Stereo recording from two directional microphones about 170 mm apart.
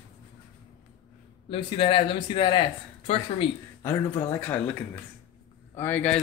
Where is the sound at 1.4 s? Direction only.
30° left (ahead or behind).